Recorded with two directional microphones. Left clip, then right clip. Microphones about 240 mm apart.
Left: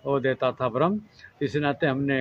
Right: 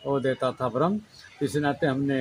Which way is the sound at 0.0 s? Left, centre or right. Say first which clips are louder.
Left 2 dB; centre.